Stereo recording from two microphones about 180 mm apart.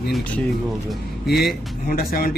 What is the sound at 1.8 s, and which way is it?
Speech, 55° left (ahead or behind).